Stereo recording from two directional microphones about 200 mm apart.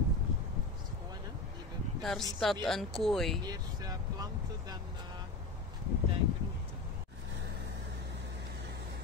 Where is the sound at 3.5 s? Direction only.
20° right (ahead or behind).